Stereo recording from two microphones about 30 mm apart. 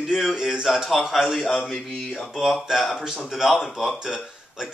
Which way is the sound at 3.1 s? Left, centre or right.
Centre.